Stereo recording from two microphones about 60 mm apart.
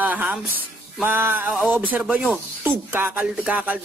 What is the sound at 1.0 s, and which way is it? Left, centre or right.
Music, right.